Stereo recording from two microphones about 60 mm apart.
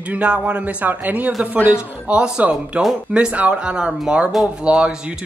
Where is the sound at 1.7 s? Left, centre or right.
Centre.